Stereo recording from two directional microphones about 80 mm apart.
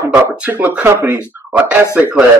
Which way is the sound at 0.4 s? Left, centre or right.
Right.